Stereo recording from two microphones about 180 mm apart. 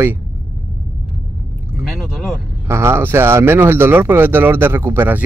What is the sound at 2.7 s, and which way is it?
Speech, 15° right (ahead or behind).